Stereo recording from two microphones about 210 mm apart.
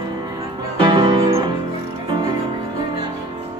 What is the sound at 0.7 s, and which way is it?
Music, 25° right (ahead or behind).